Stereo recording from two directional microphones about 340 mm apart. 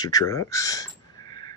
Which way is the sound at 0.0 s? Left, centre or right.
Centre.